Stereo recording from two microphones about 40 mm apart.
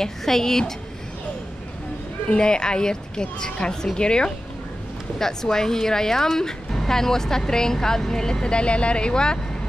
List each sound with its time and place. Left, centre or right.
0.0 s speech: centre
2.2 s speech: left